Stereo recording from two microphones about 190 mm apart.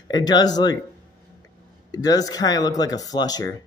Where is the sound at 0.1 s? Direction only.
20° left (ahead or behind).